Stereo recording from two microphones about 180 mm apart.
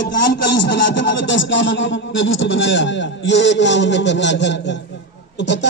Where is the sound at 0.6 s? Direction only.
85° left.